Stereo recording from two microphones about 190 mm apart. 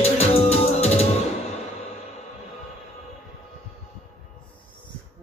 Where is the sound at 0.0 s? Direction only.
35° left (ahead or behind).